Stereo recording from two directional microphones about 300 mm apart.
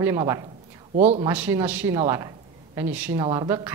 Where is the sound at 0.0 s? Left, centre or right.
Centre.